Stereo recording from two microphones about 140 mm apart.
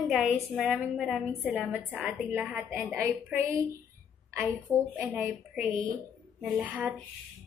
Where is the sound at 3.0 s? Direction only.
15° right (ahead or behind).